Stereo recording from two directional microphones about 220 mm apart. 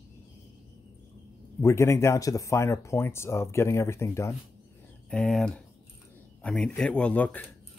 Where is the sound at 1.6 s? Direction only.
15° left (ahead or behind).